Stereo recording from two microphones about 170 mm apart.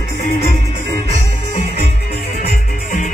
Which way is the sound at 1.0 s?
40° left (ahead or behind).